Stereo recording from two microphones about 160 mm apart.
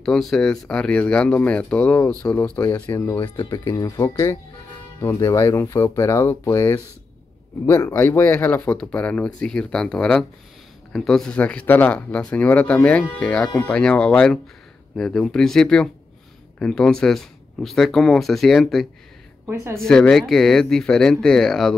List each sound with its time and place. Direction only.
0.0 s speech: centre (ahead or behind)
3.2 s speech: 25° left (ahead or behind); by 18.9 s centre (ahead or behind)
19.5 s a woman's voice: 15° right (ahead or behind)
19.8 s speech: 5° left (ahead or behind)